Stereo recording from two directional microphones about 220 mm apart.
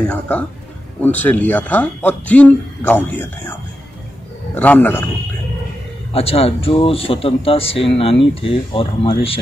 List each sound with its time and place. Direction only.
0.1 s speech: 5° left (ahead or behind)
4.6 s speech: 10° left (ahead or behind)
6.1 s speech: 25° left (ahead or behind)